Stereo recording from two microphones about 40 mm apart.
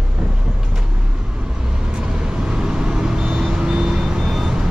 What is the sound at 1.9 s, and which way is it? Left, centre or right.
Vehicle, centre.